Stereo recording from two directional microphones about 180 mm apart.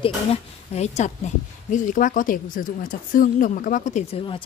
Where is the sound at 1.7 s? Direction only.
50° left (ahead or behind).